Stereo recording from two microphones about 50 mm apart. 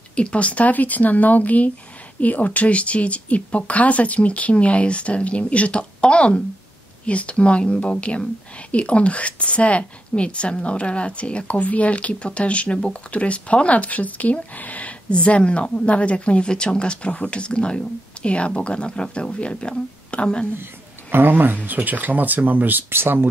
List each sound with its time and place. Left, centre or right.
0.1 s speech: left
21.1 s speech: right